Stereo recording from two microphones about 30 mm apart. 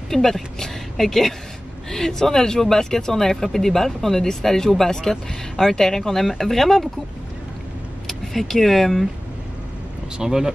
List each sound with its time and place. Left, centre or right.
0.1 s a woman's voice: centre
8.1 s speech: centre
10.2 s speech: centre